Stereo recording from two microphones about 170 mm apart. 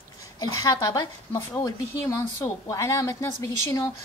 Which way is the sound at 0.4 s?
20° left (ahead or behind).